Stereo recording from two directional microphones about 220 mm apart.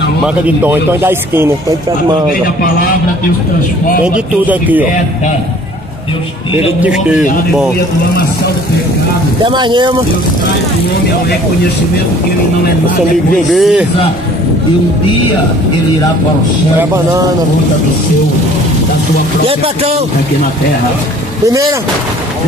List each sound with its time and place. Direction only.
0.2 s speech: 10° right (ahead or behind)
4.0 s speech: 5° right (ahead or behind)
6.8 s a man's voice: 5° right (ahead or behind)
9.4 s speech: 20° right (ahead or behind)
13.5 s a man's voice: centre (ahead or behind)
19.4 s speech: 25° right (ahead or behind)